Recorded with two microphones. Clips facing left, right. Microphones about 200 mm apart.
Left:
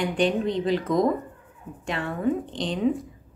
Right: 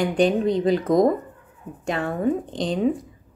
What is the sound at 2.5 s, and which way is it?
Speech, 45° right (ahead or behind).